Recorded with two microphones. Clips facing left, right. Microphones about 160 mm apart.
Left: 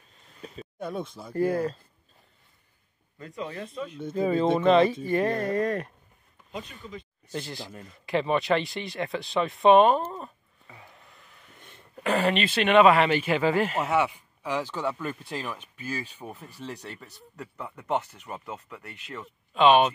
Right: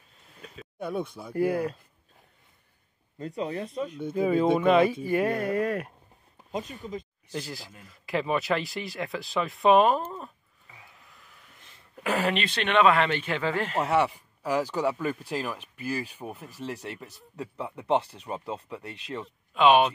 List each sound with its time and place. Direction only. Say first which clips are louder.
0.7 s speech: right 2 dB; 5° right (ahead or behind)
3.2 s speech: right 4 dB; 35° right (ahead or behind)
4.0 s speech: even; 10° right (ahead or behind)
6.8 s speech: right 5 dB; 40° right (ahead or behind)
7.3 s speech: left 1 dB; 5° right (ahead or behind)
11.9 s speech: left 2 dB; 5° right (ahead or behind)
14.4 s speech: right 3 dB; 10° right (ahead or behind)
17.8 s speech: right 3 dB; 30° right (ahead or behind)
19.5 s speech: left 1 dB; 10° right (ahead or behind)